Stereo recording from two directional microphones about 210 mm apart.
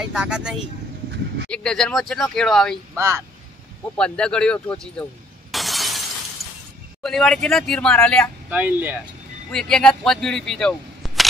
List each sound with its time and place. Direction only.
0.0 s a man's voice: 5° right (ahead or behind)
2.9 s speech: 15° right (ahead or behind)
3.9 s a man's voice: 5° left (ahead or behind)
5.5 s shatter: centre (ahead or behind)
7.0 s a man's voice: centre (ahead or behind)
8.5 s speech: 5° right (ahead or behind)
9.5 s speech: 5° left (ahead or behind)